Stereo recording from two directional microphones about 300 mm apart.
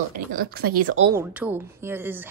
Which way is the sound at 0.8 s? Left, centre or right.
Right.